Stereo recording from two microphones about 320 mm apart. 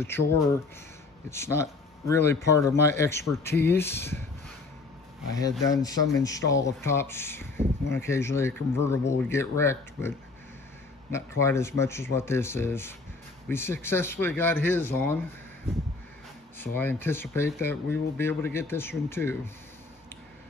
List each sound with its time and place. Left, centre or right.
1.3 s speech: centre
5.3 s speech: centre
16.5 s speech: centre